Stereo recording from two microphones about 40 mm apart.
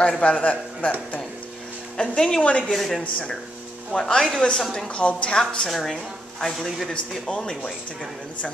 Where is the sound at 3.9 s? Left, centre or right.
Centre.